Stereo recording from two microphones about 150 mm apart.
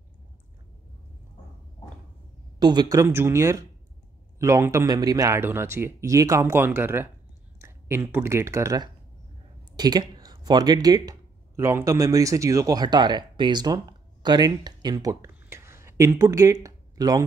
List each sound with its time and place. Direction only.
2.6 s speech: 25° right (ahead or behind)